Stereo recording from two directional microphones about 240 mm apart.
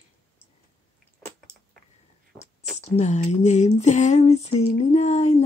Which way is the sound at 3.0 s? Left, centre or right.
Left.